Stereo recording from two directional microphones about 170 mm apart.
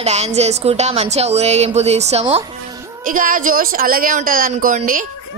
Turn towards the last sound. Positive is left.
turn(degrees=-50)  # may be behind; listen again after turning